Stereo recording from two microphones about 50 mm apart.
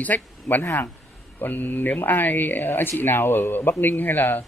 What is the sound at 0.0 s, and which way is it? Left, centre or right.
A man's voice, left.